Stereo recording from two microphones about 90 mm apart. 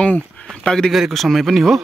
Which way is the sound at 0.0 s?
10° left (ahead or behind).